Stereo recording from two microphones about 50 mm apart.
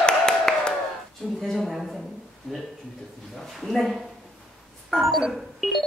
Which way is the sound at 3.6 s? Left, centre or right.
Centre.